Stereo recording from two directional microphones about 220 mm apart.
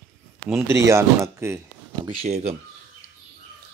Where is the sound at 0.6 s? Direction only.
10° right (ahead or behind).